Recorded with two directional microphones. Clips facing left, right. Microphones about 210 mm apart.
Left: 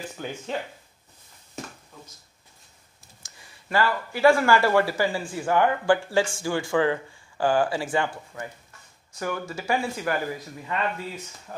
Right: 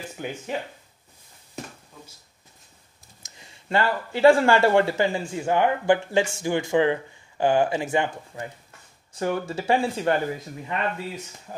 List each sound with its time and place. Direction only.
0.2 s speech: 15° right (ahead or behind)
3.3 s speech: 20° right (ahead or behind)